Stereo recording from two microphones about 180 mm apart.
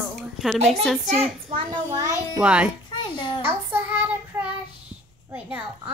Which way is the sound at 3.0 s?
25° left (ahead or behind).